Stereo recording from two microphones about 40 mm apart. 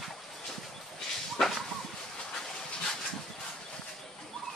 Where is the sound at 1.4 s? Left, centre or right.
Centre.